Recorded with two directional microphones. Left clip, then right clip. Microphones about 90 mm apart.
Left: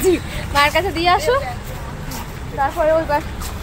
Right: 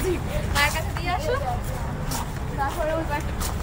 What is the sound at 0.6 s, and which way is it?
Speech, 45° left (ahead or behind).